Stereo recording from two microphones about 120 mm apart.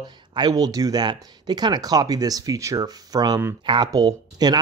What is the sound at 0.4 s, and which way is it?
Speech, 30° right (ahead or behind).